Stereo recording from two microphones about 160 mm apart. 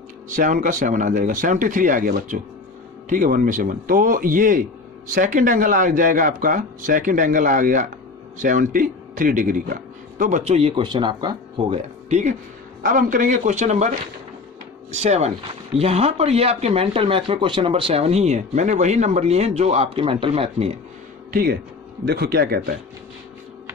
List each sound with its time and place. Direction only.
0.3 s a man's voice: 55° right (ahead or behind)
10.8 s speech: 30° right (ahead or behind); by 12.4 s 45° right (ahead or behind)
12.8 s a man's voice: 55° right (ahead or behind); by 20.7 s 40° right (ahead or behind)
21.3 s speech: 70° right (ahead or behind)
22.0 s speech: 85° right